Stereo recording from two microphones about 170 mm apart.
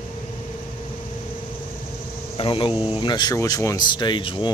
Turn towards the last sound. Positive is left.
turn(degrees=30)  # may be behind; listen again after turning